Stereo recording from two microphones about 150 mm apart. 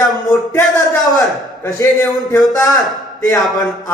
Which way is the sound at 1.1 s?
20° left (ahead or behind).